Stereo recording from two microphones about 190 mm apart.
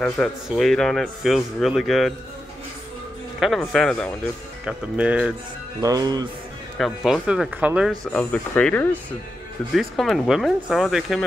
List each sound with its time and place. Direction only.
0.0 s a man's voice: 5° left (ahead or behind)
3.3 s a man's voice: centre (ahead or behind)
5.8 s speech: 20° right (ahead or behind)
6.8 s a man's voice: centre (ahead or behind)
8.1 s a man's voice: 5° left (ahead or behind)